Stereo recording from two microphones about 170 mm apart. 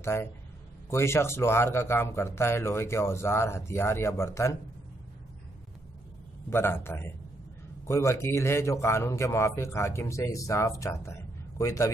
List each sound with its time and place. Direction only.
0.0 s a man's voice: 15° left (ahead or behind)
6.5 s a man's voice: 15° left (ahead or behind)